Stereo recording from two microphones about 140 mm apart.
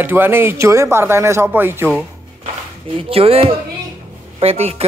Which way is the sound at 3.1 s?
45° right (ahead or behind).